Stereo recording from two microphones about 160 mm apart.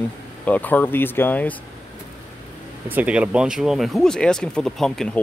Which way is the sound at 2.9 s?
10° right (ahead or behind).